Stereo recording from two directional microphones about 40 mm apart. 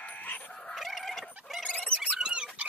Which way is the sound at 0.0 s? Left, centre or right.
Left.